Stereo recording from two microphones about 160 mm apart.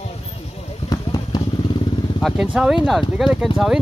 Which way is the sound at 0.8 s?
25° left (ahead or behind).